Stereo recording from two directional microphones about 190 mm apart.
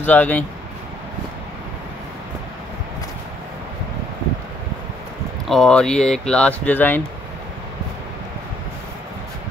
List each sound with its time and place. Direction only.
0.0 s speech: 10° left (ahead or behind)
5.5 s speech: 5° left (ahead or behind)